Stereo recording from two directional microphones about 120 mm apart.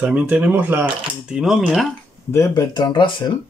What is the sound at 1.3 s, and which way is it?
Speech, 5° right (ahead or behind).